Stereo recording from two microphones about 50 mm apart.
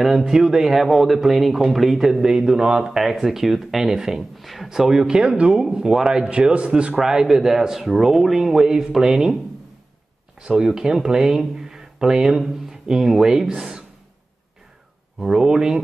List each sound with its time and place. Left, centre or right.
0.0 s a man's voice: centre
7.0 s a man's voice: centre
10.4 s a man's voice: centre
15.2 s a man's voice: centre